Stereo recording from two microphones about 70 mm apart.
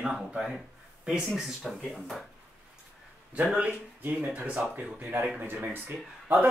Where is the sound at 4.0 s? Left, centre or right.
Right.